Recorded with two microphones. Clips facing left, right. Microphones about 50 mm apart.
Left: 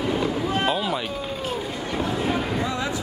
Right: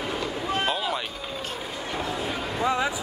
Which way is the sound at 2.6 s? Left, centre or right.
Right.